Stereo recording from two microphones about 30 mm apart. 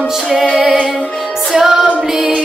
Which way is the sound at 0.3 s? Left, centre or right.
Centre.